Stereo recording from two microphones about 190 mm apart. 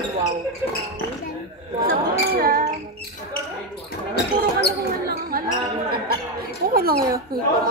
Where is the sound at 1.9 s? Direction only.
50° right (ahead or behind).